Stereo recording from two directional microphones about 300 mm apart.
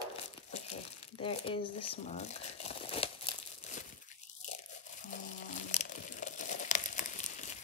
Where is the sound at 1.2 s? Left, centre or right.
Centre.